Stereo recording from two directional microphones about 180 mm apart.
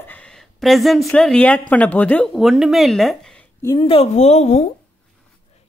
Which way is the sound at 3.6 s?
25° left (ahead or behind).